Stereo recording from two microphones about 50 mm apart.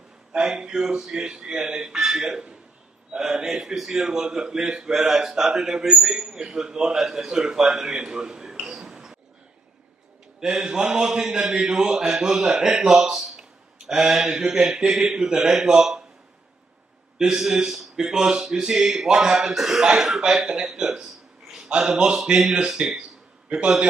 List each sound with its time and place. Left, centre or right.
0.3 s a man's voice: centre
10.4 s speech: centre
17.2 s speech: centre